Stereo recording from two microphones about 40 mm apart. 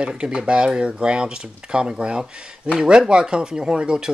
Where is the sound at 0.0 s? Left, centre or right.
Right.